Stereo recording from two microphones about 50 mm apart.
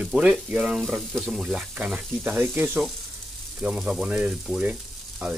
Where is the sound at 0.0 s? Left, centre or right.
Centre.